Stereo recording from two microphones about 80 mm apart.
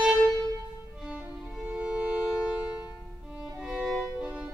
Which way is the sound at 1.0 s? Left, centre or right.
Centre.